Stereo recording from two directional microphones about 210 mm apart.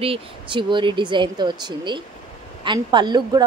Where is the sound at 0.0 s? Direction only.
25° right (ahead or behind).